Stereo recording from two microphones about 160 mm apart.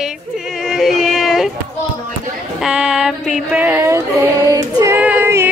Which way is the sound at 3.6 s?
20° right (ahead or behind).